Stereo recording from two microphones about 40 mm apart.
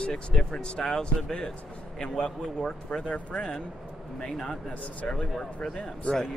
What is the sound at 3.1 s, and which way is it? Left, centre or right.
Speech, left.